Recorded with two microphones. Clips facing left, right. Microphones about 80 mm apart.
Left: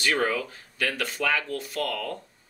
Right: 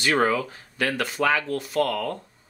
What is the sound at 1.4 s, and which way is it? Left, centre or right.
Speech, right.